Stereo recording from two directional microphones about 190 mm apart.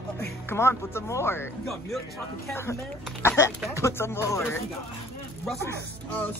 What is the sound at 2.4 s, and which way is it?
Speech, 15° left (ahead or behind).